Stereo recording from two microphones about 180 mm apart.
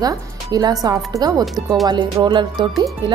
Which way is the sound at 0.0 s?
20° right (ahead or behind).